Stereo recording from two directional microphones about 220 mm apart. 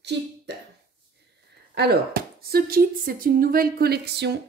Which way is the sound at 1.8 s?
45° right (ahead or behind).